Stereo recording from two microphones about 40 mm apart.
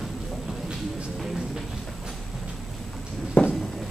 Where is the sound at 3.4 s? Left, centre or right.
Left.